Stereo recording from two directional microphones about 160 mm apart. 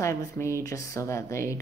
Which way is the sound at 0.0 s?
20° left (ahead or behind).